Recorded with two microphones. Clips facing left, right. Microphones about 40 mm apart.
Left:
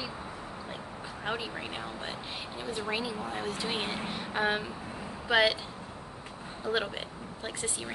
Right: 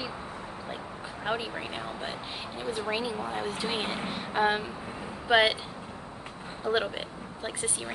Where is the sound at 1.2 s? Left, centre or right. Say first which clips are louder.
Right 3 dB; centre.